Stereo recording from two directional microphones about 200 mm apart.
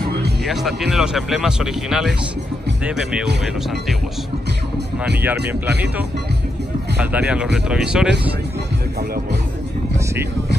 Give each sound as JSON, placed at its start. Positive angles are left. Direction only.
{"t": 0.4, "sound": "speech", "side_deg": 0}
{"t": 4.7, "sound": "speech", "side_deg": -55}
{"t": 7.0, "sound": "speech", "side_deg": -5}